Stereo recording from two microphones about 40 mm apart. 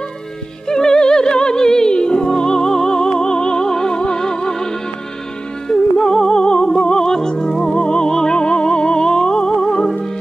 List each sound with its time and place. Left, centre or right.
0.7 s music: centre